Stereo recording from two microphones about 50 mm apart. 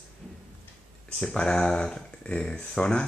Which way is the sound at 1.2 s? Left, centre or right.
Centre.